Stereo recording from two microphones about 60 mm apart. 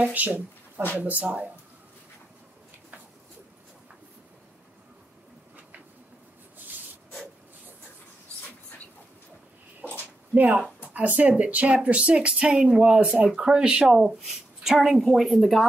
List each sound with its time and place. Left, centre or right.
0.0 s speech: right
10.3 s a woman's voice: right; by 15.6 s centre